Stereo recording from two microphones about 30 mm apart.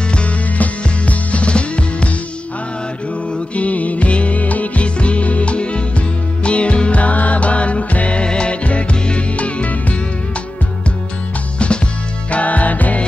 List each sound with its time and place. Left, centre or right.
0.6 s music: left
3.5 s music: left
4.8 s music: left
8.2 s music: left
12.3 s music: left